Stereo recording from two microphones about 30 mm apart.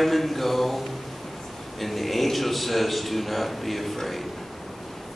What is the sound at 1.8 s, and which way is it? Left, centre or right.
A man's voice, centre.